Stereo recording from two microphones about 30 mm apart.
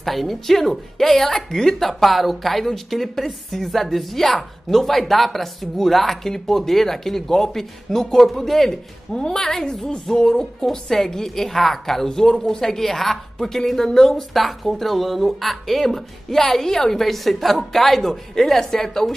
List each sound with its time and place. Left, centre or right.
0.0 s speech: centre
8.6 s speech: left
14.3 s speech: centre
16.7 s speech: left
17.0 s speech: centre
18.3 s speech: centre